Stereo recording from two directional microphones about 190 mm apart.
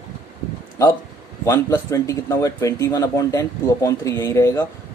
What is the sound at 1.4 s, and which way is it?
Speech, 15° left (ahead or behind).